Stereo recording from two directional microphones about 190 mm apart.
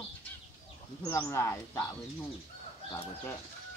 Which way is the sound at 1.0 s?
15° left (ahead or behind).